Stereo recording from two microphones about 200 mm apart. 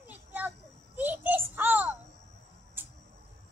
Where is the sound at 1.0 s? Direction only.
10° right (ahead or behind).